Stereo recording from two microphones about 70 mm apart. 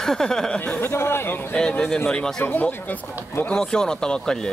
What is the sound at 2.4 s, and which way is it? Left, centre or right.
Speech, left.